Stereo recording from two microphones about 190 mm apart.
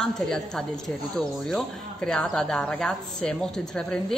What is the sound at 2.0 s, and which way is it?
A woman's voice, centre (ahead or behind).